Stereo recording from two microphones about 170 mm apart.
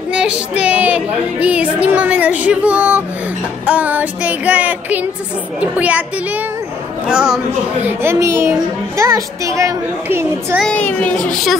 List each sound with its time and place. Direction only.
0.1 s speech: 5° right (ahead or behind)
7.1 s speech: 5° right (ahead or behind)
10.6 s a child's voice: 10° left (ahead or behind)